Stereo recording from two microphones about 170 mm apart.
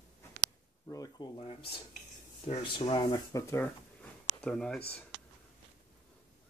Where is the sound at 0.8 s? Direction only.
20° left (ahead or behind).